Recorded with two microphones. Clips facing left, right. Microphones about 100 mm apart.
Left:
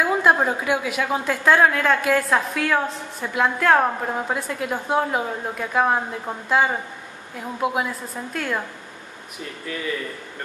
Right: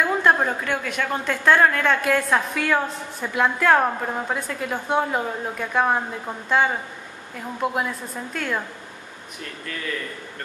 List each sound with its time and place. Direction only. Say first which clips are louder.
0.0 s a woman's voice: left 1 dB; 5° left (ahead or behind)